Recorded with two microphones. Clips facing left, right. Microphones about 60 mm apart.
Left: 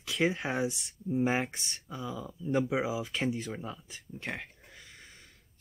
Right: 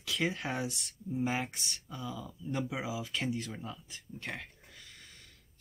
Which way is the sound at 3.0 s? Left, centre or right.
Left.